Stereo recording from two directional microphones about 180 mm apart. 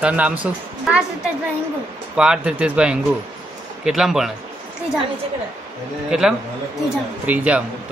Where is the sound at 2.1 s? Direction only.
5° right (ahead or behind).